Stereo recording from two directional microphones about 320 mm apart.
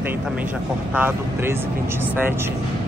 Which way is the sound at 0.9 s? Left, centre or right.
Centre.